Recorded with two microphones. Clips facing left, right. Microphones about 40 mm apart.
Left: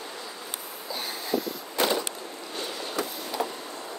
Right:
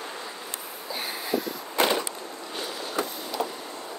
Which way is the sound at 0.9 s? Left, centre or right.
Centre.